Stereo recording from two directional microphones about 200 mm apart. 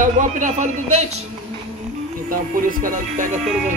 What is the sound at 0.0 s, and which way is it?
Speech, 40° right (ahead or behind).